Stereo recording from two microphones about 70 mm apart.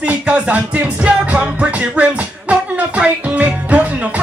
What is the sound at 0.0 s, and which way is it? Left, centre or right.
Music, centre.